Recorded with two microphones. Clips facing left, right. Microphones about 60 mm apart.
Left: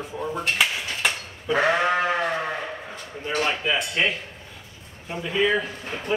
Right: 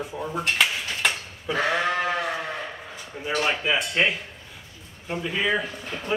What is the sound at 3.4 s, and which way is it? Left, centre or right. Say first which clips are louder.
A man's voice: even; centre.